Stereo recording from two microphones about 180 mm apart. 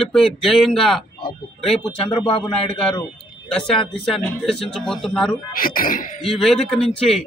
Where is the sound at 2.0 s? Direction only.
30° left (ahead or behind).